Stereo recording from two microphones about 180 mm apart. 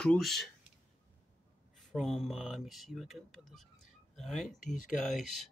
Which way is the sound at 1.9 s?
Centre (ahead or behind).